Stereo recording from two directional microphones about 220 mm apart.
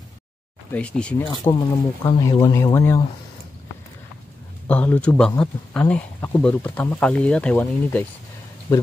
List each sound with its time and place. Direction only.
0.7 s speech: 5° left (ahead or behind)
1.2 s speech: 20° left (ahead or behind)
4.6 s speech: 5° left (ahead or behind)